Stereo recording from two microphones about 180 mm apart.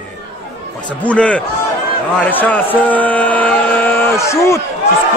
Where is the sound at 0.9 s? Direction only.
5° left (ahead or behind).